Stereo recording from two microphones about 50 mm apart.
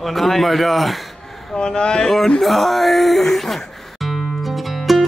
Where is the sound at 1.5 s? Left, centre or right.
Centre.